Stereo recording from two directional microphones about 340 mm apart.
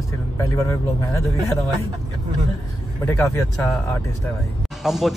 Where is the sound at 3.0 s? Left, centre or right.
Centre.